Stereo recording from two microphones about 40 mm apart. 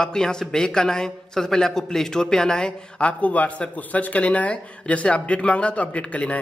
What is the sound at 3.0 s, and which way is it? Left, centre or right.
Speech, left.